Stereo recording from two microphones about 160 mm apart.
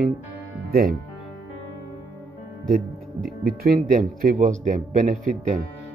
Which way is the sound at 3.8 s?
55° right (ahead or behind).